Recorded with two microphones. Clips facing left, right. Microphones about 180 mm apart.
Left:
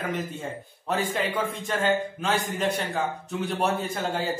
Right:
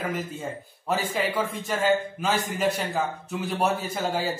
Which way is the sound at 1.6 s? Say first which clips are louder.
Right 2 dB; 5° right (ahead or behind).